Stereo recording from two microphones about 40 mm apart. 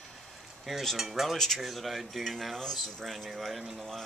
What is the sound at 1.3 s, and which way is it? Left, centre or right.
Cutlery, centre.